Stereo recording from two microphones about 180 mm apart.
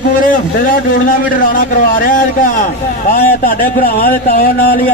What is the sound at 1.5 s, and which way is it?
Speech, 50° left (ahead or behind).